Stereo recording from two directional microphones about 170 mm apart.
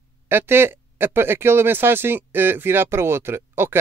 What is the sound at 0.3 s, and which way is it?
Speech, 15° right (ahead or behind).